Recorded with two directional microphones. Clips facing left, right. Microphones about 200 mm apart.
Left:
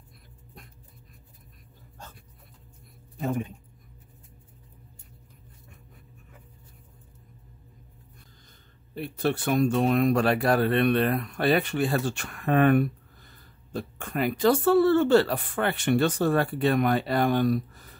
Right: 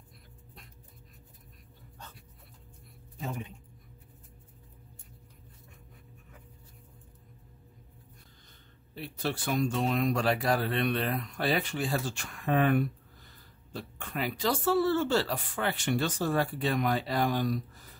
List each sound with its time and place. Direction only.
3.2 s speech: 50° left (ahead or behind)
8.9 s speech: 55° left (ahead or behind)